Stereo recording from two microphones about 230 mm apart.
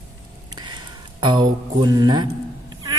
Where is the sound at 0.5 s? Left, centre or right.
Centre.